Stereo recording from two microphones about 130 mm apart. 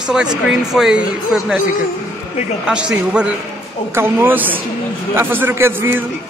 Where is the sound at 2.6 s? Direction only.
10° right (ahead or behind).